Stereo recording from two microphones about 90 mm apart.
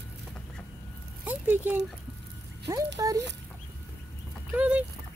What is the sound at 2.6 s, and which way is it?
Speech, 40° right (ahead or behind).